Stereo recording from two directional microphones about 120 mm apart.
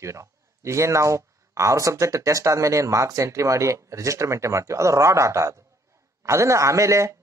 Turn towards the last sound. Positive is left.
turn(degrees=-25)  # may be behind; listen again after turning